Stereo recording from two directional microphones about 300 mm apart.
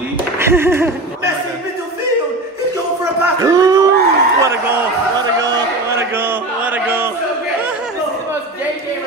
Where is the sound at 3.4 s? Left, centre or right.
Centre.